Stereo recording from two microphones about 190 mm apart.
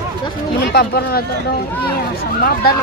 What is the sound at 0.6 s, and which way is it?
Speech, 55° left (ahead or behind).